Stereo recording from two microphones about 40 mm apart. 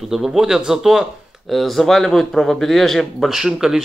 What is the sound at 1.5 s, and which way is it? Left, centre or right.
Speech, centre.